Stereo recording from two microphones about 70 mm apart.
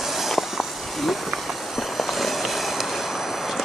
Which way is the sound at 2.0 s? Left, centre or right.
Centre.